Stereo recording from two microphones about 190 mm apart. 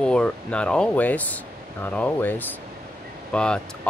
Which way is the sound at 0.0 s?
5° left (ahead or behind).